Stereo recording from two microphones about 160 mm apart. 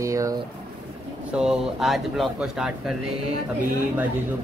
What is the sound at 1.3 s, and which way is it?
Speech, 5° right (ahead or behind).